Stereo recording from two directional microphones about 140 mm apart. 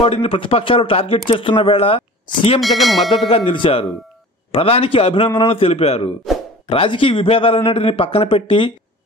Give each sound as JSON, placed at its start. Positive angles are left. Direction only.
{"t": 0.0, "sound": "speech", "side_deg": 45}
{"t": 2.6, "sound": "speech", "side_deg": 0}
{"t": 3.1, "sound": "speech", "side_deg": 40}
{"t": 6.3, "sound": "plop", "side_deg": 0}
{"t": 6.7, "sound": "speech", "side_deg": 40}